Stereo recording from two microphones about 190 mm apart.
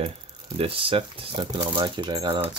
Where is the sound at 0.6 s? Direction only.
30° right (ahead or behind).